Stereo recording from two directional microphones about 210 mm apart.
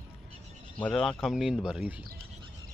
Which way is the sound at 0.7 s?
5° left (ahead or behind).